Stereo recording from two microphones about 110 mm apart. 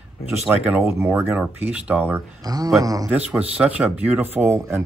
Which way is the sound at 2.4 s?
35° right (ahead or behind).